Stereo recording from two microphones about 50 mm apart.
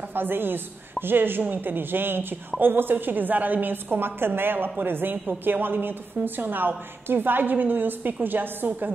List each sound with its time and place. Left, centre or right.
0.1 s a woman's voice: right